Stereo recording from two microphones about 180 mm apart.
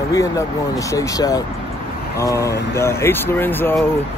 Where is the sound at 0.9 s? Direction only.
20° left (ahead or behind).